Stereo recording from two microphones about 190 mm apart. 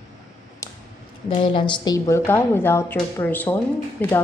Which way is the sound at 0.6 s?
15° left (ahead or behind).